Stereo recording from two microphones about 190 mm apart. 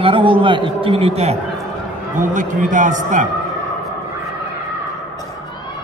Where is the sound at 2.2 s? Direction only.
40° right (ahead or behind).